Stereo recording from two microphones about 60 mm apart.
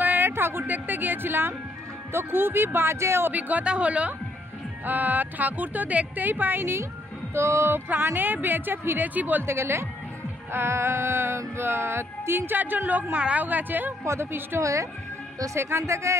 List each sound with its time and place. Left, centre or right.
0.0 s a sound: right
0.3 s a woman's voice: right
3.3 s speech: right
7.3 s music: right
7.9 s a woman's voice: right
9.5 s music: right
12.5 s speech: right
14.0 s music: right
14.6 s speech: right
15.6 s music: right